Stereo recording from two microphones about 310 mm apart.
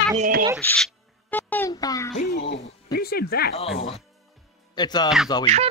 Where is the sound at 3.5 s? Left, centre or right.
Centre.